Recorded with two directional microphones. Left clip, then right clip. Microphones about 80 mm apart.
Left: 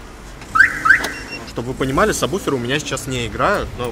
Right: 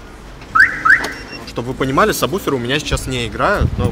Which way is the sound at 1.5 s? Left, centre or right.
Right.